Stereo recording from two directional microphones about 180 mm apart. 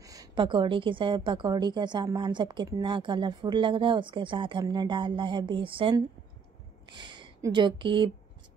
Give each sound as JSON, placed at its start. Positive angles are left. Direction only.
{"t": 0.0, "sound": "a woman's voice", "side_deg": -20}